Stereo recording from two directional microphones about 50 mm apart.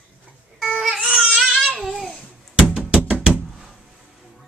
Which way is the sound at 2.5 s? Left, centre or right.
Centre.